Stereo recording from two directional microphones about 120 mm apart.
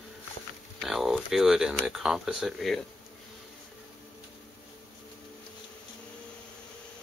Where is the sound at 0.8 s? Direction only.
Centre (ahead or behind).